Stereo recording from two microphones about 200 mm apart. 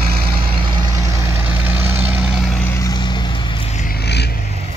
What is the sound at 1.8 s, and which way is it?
Vehicle, 30° right (ahead or behind).